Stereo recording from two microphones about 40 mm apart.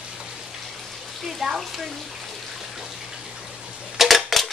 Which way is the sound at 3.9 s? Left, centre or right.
Centre.